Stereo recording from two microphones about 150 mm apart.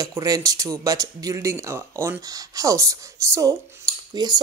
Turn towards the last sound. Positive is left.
turn(degrees=-25)  # may be behind; listen again after turning